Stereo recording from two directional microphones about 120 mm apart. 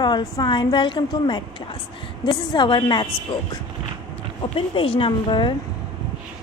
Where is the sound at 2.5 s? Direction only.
40° left (ahead or behind).